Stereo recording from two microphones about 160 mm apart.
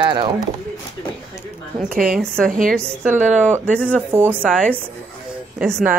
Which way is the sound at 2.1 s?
5° left (ahead or behind).